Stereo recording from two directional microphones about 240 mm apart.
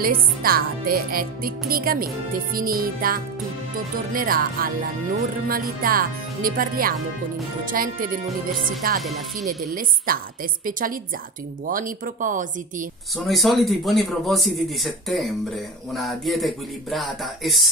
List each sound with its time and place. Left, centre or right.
0.0 s speech: right
9.0 s speech: centre
9.5 s speech: right
13.3 s speech: centre